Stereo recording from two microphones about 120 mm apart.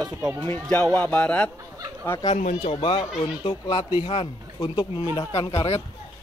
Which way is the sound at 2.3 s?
70° left (ahead or behind).